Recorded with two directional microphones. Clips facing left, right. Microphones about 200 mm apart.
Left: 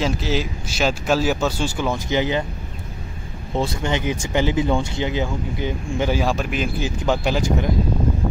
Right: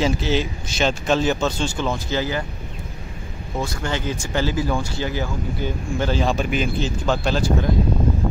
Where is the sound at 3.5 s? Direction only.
25° left (ahead or behind).